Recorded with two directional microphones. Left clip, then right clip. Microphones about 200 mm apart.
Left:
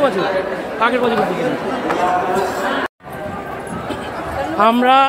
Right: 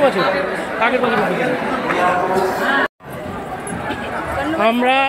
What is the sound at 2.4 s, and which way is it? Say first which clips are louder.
Speech: right 1 dB; 15° left (ahead or behind).